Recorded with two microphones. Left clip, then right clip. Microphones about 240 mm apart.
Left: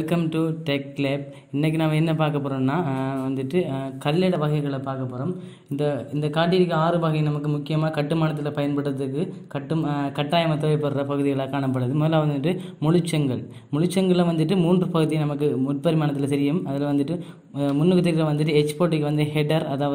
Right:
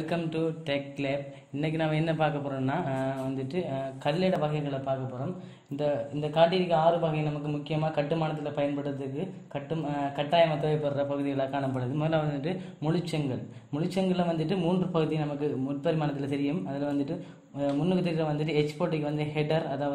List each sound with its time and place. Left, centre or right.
0.1 s a man's voice: left
5.8 s a man's voice: left
9.9 s a man's voice: left